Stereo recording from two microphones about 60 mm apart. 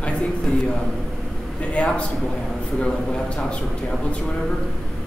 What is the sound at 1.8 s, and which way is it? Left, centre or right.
Speech, left.